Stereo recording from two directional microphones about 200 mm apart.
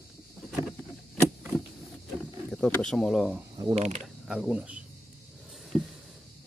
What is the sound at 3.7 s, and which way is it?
Mechanisms, 30° right (ahead or behind).